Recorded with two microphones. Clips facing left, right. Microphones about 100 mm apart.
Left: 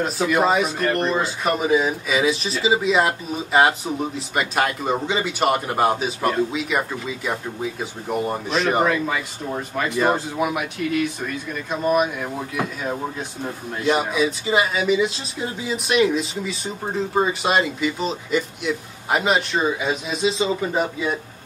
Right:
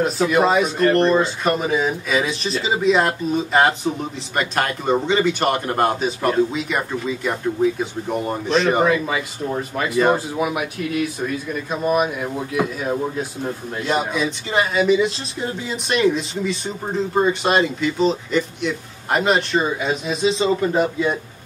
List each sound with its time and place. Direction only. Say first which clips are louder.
0.0 s speech: right 2 dB; centre (ahead or behind)